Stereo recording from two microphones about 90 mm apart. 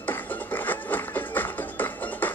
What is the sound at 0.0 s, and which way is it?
Music, 20° left (ahead or behind).